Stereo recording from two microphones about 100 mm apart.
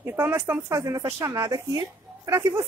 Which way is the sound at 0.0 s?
25° right (ahead or behind).